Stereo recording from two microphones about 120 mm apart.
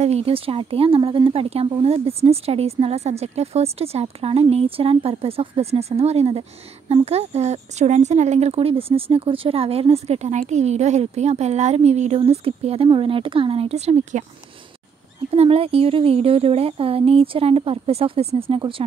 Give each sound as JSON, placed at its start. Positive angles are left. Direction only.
{"t": 0.0, "sound": "speech", "side_deg": -60}
{"t": 12.2, "sound": "a woman's voice", "side_deg": -55}
{"t": 15.3, "sound": "a woman's voice", "side_deg": -55}